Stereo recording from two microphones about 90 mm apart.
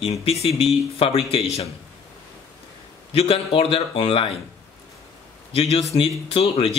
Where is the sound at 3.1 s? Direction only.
90° left.